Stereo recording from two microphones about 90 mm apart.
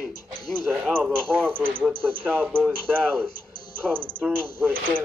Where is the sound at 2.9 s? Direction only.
10° left (ahead or behind).